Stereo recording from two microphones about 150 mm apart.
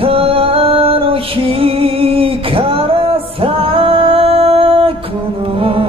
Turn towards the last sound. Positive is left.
turn(degrees=-35)  # may be behind; listen again after turning